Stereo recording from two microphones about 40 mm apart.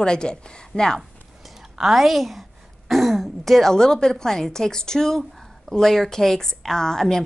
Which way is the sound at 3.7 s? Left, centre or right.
Centre.